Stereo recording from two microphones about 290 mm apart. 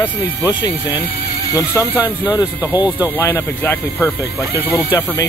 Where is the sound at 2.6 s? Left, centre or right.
Centre.